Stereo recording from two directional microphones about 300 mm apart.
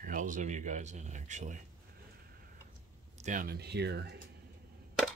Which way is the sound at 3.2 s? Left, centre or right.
Right.